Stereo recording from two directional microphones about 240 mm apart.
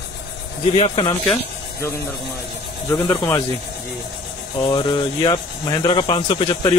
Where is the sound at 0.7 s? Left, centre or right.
Left.